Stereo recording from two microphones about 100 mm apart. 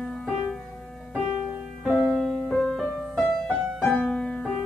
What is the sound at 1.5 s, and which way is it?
Music, 10° right (ahead or behind).